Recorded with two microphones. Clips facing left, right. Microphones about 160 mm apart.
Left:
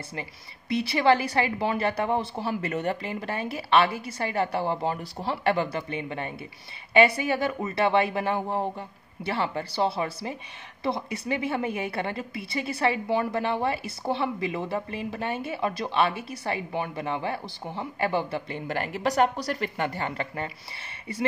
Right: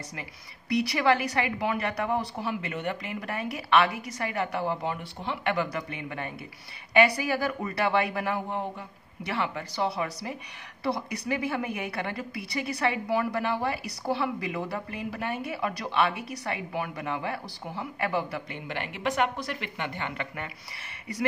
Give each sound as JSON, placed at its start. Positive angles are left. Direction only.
{"t": 0.1, "sound": "a woman's voice", "side_deg": 25}
{"t": 2.6, "sound": "a woman's voice", "side_deg": 40}
{"t": 18.7, "sound": "a woman's voice", "side_deg": 40}